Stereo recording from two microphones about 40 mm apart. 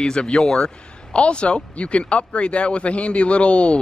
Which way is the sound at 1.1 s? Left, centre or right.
Left.